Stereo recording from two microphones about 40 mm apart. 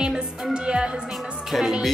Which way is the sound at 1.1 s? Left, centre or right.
Centre.